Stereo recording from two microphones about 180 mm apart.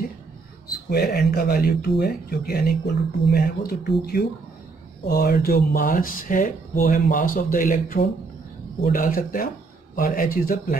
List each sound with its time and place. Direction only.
0.8 s speech: 60° left (ahead or behind)